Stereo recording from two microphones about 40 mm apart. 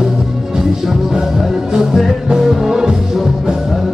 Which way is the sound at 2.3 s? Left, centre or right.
Centre.